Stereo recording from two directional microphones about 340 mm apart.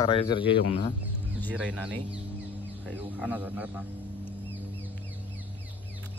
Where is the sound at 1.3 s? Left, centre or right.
Centre.